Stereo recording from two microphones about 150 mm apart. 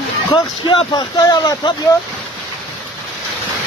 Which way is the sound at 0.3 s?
30° left (ahead or behind).